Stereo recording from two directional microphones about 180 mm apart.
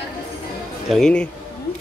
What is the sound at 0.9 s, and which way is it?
Speech, 5° left (ahead or behind).